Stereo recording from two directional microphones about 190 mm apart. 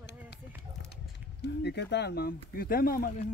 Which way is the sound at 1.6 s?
65° left (ahead or behind).